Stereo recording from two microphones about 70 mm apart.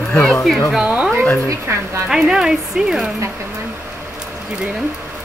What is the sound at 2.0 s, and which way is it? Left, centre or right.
Speech, centre.